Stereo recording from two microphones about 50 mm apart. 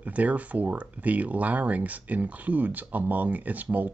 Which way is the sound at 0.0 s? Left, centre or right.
Right.